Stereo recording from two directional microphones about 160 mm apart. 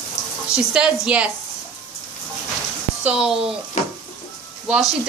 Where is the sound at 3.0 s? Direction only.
5° right (ahead or behind).